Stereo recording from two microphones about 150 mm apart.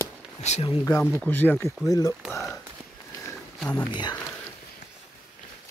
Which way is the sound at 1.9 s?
25° left (ahead or behind).